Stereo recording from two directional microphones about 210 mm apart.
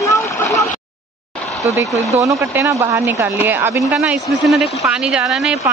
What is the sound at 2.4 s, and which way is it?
A man's voice, 15° right (ahead or behind).